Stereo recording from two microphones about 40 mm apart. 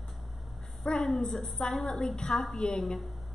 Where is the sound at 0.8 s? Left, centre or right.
Centre.